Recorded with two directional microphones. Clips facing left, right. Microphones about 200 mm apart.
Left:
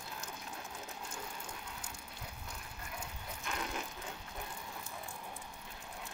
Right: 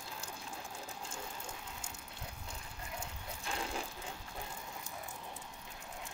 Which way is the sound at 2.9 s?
30° right (ahead or behind).